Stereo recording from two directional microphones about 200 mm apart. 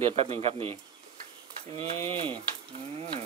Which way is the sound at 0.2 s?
30° right (ahead or behind).